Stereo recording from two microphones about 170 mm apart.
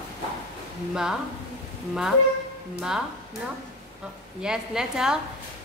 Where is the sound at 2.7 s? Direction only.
5° right (ahead or behind).